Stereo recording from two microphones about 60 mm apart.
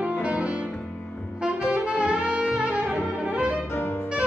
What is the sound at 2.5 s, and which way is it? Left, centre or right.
Music, centre.